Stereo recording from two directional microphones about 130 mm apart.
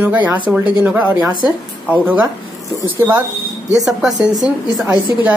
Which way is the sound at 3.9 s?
Centre (ahead or behind).